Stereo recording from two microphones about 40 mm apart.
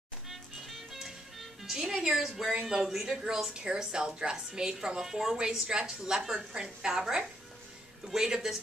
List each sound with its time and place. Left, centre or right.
0.3 s music: centre
2.0 s a woman's voice: centre